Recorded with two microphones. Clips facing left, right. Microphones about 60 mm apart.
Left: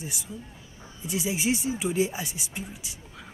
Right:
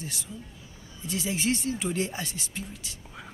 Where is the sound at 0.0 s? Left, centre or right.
Centre.